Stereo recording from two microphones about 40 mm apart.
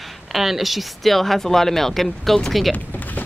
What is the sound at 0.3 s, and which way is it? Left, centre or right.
Speech, centre.